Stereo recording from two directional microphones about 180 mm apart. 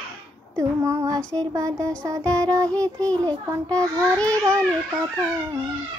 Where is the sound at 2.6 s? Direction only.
5° left (ahead or behind).